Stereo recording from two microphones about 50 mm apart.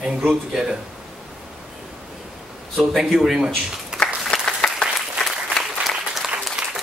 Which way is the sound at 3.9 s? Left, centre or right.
Centre.